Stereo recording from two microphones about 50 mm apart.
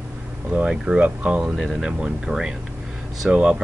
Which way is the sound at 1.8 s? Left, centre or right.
Right.